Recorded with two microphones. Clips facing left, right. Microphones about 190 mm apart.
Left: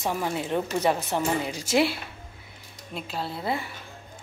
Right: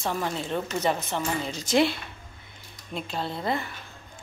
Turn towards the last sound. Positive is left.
turn(degrees=5)  # may be behind; listen again after turning